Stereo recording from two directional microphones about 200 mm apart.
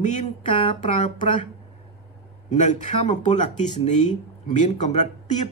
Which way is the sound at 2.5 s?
35° left (ahead or behind).